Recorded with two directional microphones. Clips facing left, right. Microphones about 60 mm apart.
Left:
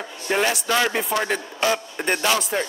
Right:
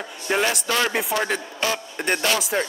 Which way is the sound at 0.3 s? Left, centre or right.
Centre.